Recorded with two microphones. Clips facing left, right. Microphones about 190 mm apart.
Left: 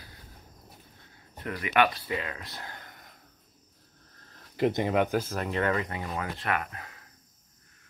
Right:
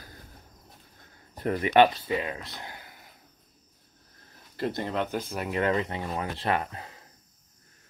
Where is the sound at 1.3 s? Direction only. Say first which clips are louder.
Right 6 dB; 35° right (ahead or behind); by 2.7 s 20° right (ahead or behind).